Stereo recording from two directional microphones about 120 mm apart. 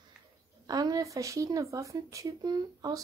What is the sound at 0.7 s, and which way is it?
Speech, 30° right (ahead or behind).